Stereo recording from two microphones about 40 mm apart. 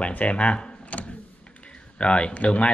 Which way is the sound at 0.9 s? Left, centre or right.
Left.